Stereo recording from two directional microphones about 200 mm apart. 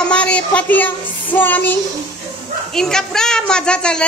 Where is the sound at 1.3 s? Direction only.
10° left (ahead or behind).